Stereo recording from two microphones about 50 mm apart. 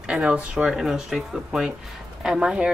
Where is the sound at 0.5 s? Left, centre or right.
Centre.